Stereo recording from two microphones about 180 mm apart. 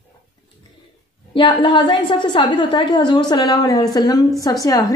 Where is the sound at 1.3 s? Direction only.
30° left (ahead or behind).